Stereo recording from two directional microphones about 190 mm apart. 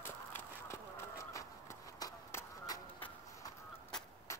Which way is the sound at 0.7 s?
15° left (ahead or behind).